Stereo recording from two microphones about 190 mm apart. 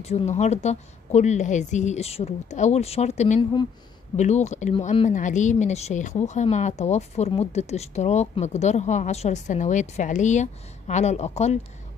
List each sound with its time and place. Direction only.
0.0 s speech: 35° left (ahead or behind)